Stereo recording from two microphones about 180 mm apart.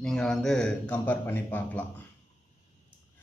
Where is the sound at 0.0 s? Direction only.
5° left (ahead or behind).